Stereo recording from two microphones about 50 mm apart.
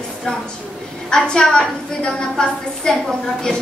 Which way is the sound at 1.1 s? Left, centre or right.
Centre.